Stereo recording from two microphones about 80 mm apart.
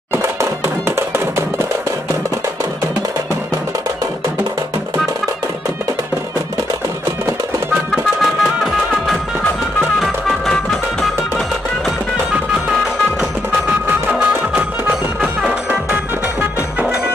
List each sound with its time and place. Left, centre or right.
0.1 s music: right
9.9 s music: centre
14.1 s music: centre